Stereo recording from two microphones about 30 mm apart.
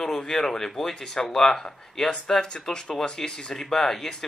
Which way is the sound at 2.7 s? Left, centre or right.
Left.